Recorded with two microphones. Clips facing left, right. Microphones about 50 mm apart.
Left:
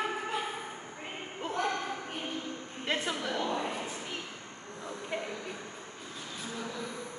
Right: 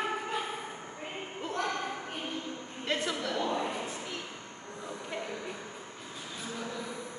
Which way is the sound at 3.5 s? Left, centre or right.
Centre.